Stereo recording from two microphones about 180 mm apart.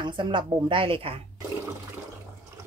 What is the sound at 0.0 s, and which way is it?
A woman's voice, 25° right (ahead or behind).